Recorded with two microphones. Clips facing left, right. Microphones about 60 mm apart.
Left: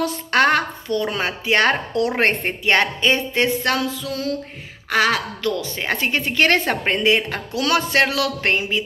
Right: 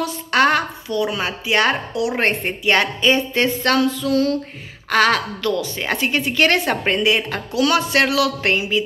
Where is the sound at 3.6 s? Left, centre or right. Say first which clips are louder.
Right 4 dB; centre.